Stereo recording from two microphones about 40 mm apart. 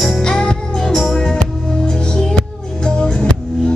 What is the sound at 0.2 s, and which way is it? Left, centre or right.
Music, left.